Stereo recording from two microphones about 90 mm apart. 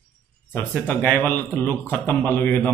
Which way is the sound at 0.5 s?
15° left (ahead or behind).